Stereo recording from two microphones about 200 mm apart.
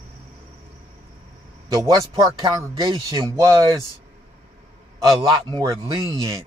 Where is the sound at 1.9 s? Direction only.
25° right (ahead or behind).